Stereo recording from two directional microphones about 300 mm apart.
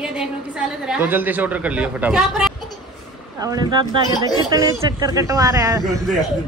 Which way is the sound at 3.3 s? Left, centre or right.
Centre.